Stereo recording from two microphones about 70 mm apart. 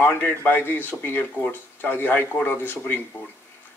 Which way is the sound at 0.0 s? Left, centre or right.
Left.